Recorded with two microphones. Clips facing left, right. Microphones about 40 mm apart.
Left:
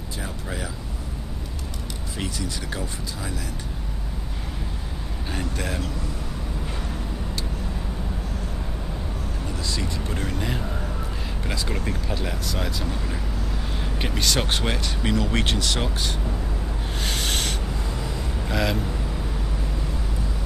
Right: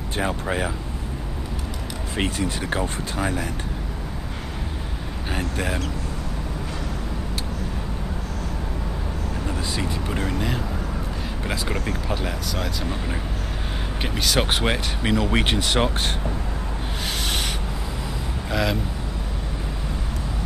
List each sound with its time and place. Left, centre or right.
0.2 s speech: right
2.1 s speech: right
5.3 s speech: centre
9.7 s speech: right
11.4 s speech: centre
12.3 s speech: centre
14.0 s speech: centre
14.4 s speech: right
17.0 s rub: centre
18.5 s speech: centre